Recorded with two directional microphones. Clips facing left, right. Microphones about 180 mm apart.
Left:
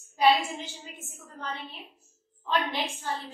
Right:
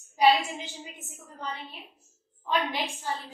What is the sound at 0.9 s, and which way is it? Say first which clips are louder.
A woman's voice: even; 20° right (ahead or behind).